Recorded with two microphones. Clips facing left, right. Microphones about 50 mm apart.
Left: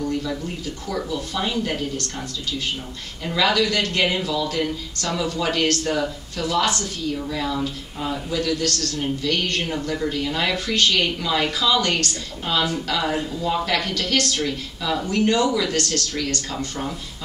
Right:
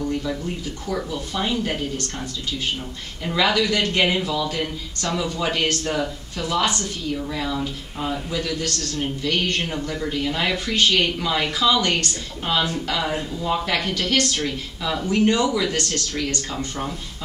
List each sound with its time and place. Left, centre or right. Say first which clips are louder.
0.8 s speech: even; centre
3.3 s speech: even; centre